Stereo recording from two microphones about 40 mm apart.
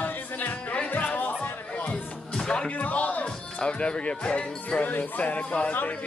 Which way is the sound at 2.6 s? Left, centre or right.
Left.